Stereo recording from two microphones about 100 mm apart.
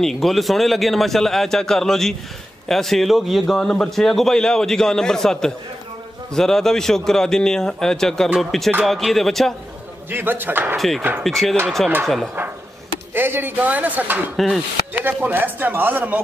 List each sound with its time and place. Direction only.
0.0 s a man's voice: centre (ahead or behind)
10.0 s speech: 20° right (ahead or behind)
11.2 s a man's voice: centre (ahead or behind)
13.1 s speech: 20° right (ahead or behind)
14.3 s a man's voice: centre (ahead or behind)
15.0 s speech: 15° right (ahead or behind)